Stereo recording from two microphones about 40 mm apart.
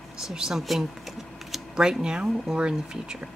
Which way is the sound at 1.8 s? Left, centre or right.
Centre.